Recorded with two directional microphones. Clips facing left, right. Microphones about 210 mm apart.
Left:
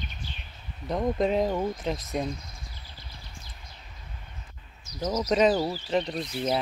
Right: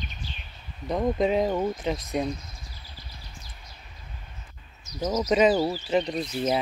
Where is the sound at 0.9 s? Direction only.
5° right (ahead or behind).